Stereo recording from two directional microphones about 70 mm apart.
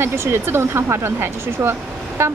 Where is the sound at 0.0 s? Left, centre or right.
Right.